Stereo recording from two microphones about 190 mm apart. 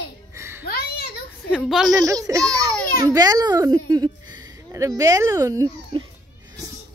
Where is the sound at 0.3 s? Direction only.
15° right (ahead or behind).